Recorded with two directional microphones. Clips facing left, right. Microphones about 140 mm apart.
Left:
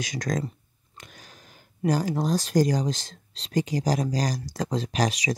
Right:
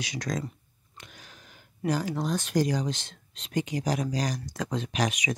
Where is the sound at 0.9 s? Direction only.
45° left (ahead or behind).